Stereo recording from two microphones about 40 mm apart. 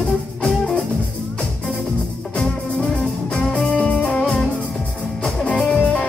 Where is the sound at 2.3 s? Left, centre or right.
Left.